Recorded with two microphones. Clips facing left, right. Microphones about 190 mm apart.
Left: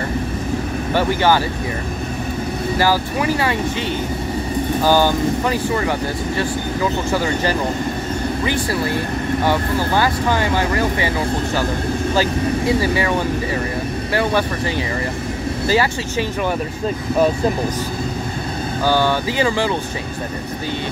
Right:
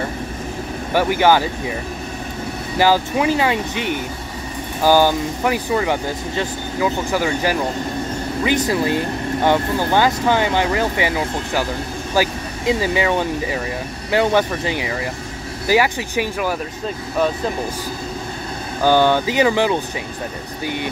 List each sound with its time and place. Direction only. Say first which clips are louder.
0.9 s speech: right 2 dB; 15° right (ahead or behind)
2.8 s speech: right 4 dB; 20° right (ahead or behind)
14.1 s speech: right 3 dB; 20° right (ahead or behind)
18.9 s speech: right 3 dB; 15° right (ahead or behind)